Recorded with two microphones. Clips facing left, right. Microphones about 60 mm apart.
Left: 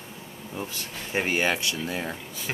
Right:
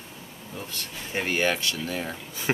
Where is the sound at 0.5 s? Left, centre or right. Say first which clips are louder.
Left 2 dB; centre.